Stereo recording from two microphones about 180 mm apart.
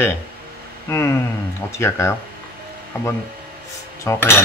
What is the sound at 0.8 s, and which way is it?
Speech, 15° left (ahead or behind).